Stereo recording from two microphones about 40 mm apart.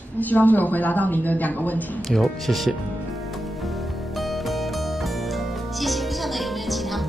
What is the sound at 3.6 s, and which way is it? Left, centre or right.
Music, centre.